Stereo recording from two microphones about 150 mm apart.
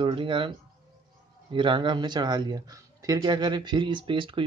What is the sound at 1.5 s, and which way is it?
Speech, 35° right (ahead or behind).